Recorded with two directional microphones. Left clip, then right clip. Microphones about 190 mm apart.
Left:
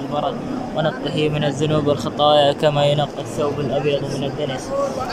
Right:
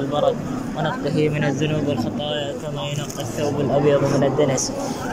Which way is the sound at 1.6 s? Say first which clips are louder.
Left 4 dB; 25° left (ahead or behind).